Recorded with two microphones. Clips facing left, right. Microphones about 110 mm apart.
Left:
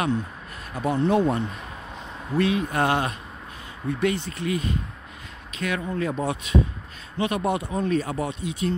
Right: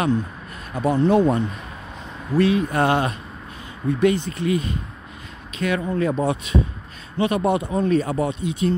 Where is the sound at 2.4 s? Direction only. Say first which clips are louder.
Right 4 dB; 35° right (ahead or behind).